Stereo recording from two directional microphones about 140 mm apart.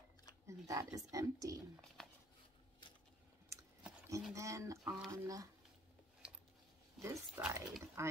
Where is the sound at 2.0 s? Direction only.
5° left (ahead or behind).